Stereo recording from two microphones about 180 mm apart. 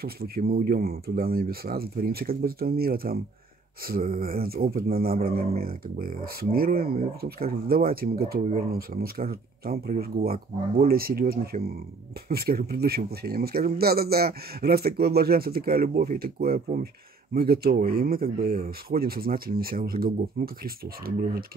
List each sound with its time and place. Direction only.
0.0 s a man's voice: 60° right (ahead or behind)